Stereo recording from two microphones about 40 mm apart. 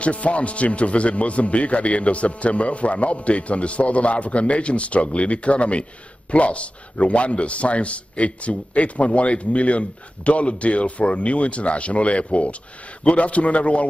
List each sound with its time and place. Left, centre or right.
0.0 s a man's voice: left